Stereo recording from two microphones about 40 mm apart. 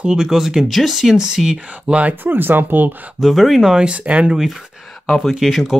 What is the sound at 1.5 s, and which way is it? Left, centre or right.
Speech, right.